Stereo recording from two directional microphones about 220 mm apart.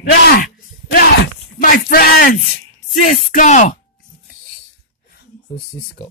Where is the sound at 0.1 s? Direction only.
40° left (ahead or behind).